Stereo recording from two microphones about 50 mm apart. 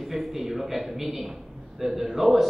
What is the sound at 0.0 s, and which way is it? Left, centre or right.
A man's voice, centre.